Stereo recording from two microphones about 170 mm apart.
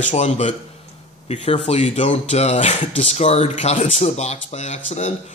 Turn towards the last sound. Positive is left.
turn(degrees=45)  # may be behind; listen again after turning